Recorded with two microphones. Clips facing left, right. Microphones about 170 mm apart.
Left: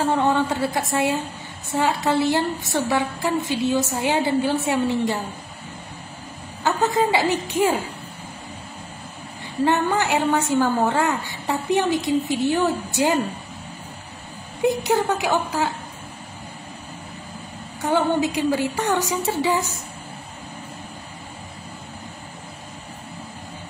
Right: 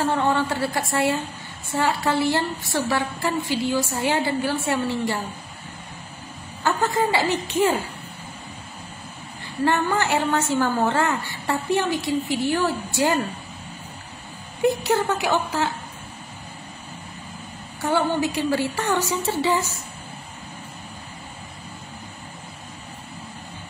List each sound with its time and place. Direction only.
0.0 s a woman's voice: 15° left (ahead or behind)
6.6 s a woman's voice: 20° left (ahead or behind)
9.9 s a woman's voice: 15° left (ahead or behind)
14.6 s a woman's voice: 15° left (ahead or behind)
17.8 s a woman's voice: 15° left (ahead or behind)